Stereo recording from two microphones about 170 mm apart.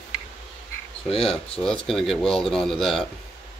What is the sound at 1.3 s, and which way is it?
Speech, 5° left (ahead or behind).